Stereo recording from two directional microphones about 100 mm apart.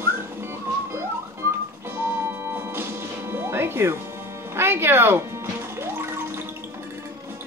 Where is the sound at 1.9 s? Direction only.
25° right (ahead or behind).